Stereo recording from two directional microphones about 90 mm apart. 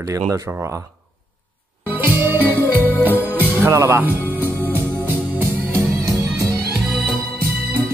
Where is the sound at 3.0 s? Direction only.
20° right (ahead or behind).